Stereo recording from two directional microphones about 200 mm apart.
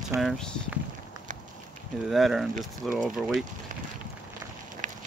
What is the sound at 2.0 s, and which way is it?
Speech, centre (ahead or behind).